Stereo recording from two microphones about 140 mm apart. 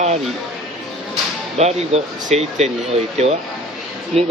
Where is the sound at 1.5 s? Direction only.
50° right (ahead or behind).